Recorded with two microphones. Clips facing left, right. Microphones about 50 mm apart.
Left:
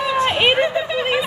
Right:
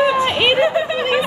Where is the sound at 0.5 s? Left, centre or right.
Centre.